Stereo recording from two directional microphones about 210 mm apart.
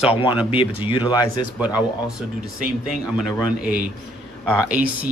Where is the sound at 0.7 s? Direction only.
25° left (ahead or behind).